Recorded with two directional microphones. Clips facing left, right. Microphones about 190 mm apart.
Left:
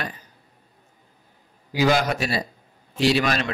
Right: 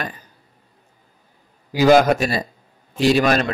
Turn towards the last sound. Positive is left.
turn(degrees=-45)  # may be behind; listen again after turning